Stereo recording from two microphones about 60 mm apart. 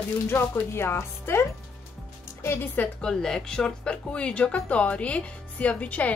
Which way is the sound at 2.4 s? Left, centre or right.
Left.